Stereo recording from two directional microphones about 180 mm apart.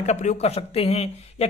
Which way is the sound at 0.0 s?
40° left (ahead or behind).